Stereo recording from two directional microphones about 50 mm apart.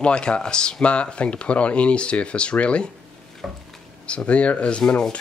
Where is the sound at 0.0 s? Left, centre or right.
Centre.